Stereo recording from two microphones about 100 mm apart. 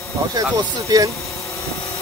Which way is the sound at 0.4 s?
35° right (ahead or behind).